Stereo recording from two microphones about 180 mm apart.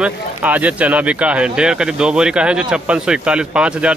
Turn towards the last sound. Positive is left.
turn(degrees=-5)  # may be behind; listen again after turning